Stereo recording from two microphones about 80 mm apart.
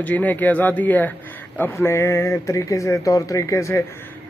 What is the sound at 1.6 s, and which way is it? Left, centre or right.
Speech, left.